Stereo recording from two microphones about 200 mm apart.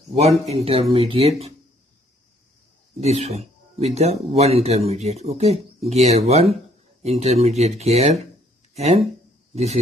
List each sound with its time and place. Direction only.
0.1 s speech: 30° right (ahead or behind)
3.0 s speech: 35° right (ahead or behind)